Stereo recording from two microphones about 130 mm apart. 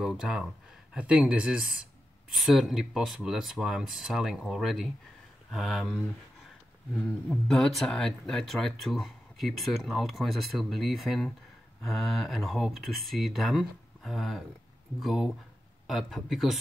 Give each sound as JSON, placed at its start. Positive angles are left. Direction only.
{"t": 0.0, "sound": "speech", "side_deg": -5}